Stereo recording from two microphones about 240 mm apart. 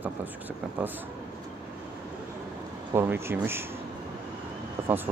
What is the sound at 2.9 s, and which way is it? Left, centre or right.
Speech, centre.